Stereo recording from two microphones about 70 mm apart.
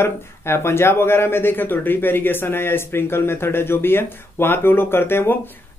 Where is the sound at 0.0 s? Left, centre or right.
Left.